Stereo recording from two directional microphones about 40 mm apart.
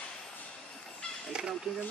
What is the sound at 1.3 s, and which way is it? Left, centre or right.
Speech, right.